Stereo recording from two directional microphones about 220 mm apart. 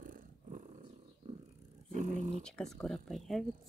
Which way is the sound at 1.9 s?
35° right (ahead or behind).